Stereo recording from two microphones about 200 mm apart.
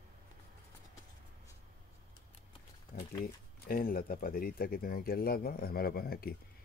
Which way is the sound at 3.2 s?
45° left (ahead or behind).